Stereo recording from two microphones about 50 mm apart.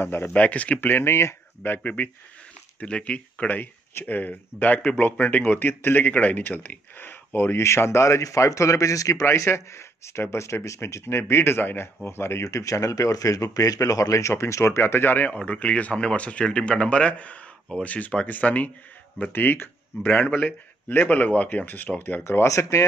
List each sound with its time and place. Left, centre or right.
0.2 s speech: left
0.7 s speech: left
1.8 s speech: left
6.0 s speech: left
7.6 s speech: left
15.0 s speech: left
15.3 s speech: left
19.3 s speech: left
20.3 s speech: left
22.3 s speech: left